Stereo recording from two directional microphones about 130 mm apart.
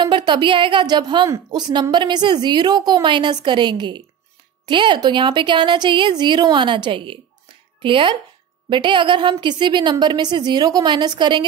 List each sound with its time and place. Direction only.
0.0 s a woman's voice: 35° right (ahead or behind)